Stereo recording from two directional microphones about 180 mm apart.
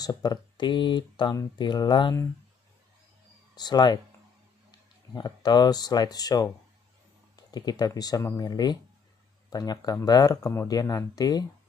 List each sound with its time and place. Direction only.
0.0 s speech: 20° left (ahead or behind)
3.5 s speech: 25° left (ahead or behind)